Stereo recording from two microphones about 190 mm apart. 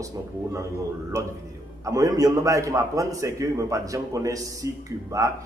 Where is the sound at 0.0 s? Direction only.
15° right (ahead or behind).